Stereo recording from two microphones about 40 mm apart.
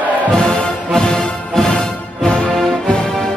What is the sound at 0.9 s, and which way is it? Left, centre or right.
Music, centre.